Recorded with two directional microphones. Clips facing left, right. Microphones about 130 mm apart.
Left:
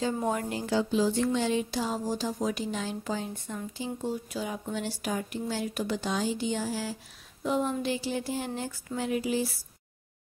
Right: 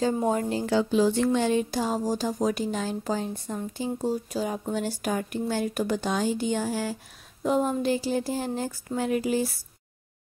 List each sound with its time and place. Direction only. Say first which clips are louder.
0.0 s a woman's voice: right 4 dB; 30° right (ahead or behind)
0.7 s speech: right 3 dB; 65° right (ahead or behind)
7.4 s speech: right 4 dB; 45° right (ahead or behind)